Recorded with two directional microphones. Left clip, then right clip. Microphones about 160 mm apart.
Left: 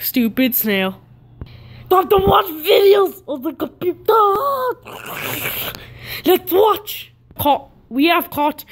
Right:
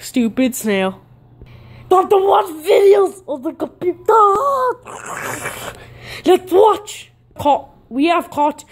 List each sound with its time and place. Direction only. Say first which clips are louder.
0.0 s speech: even; 10° right (ahead or behind)
1.4 s a sound: left 2 dB; centre (ahead or behind)
2.6 s speech: right 1 dB; 5° left (ahead or behind)